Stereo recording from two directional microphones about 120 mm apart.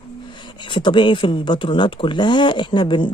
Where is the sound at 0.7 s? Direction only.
40° left (ahead or behind).